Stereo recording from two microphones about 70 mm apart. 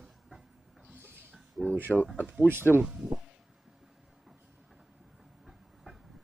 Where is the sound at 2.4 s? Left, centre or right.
Right.